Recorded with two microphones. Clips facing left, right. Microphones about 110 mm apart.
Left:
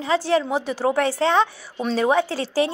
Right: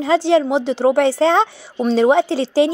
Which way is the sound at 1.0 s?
30° right (ahead or behind).